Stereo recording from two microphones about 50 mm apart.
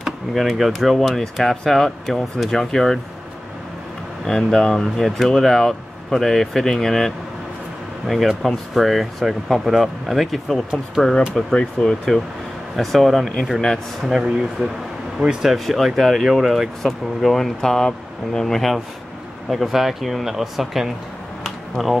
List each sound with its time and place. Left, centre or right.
0.0 s speech: centre
4.2 s speech: centre
12.7 s speech: centre
14.6 s speech: right
15.5 s speech: centre